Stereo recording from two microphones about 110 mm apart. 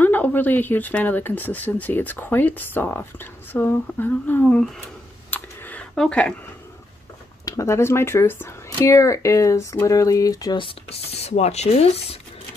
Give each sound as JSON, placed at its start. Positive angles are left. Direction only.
{"t": 0.0, "sound": "speech", "side_deg": 15}
{"t": 5.3, "sound": "a sound", "side_deg": 15}
{"t": 5.9, "sound": "speech", "side_deg": 10}
{"t": 7.4, "sound": "speech", "side_deg": 30}
{"t": 10.6, "sound": "speech", "side_deg": 60}